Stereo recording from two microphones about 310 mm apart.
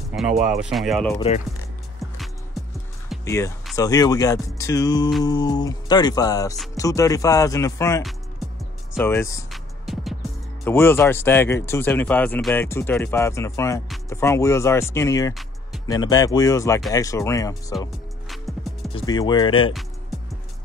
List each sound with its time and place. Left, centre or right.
0.1 s speech: centre
2.6 s music: centre
3.1 s speech: centre
8.9 s music: centre
10.6 s speech: centre
17.7 s music: centre
18.9 s speech: centre
20.1 s music: centre